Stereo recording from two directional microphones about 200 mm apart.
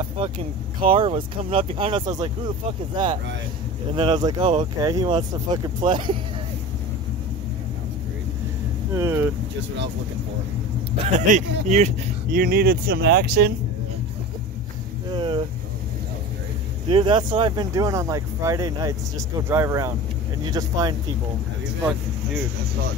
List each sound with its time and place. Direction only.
0.7 s speech: 25° right (ahead or behind)
3.9 s speech: 25° right (ahead or behind)
8.9 s speech: 15° right (ahead or behind)
11.1 s speech: 35° right (ahead or behind); by 13.5 s 50° right (ahead or behind)
15.1 s speech: 25° right (ahead or behind)
16.9 s speech: 25° right (ahead or behind)